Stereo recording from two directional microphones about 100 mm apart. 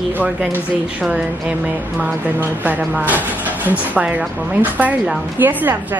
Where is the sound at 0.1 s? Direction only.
15° right (ahead or behind).